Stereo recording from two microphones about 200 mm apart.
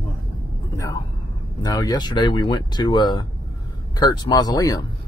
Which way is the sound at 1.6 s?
20° left (ahead or behind).